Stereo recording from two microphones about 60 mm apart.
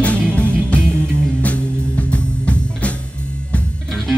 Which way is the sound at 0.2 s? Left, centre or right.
Centre.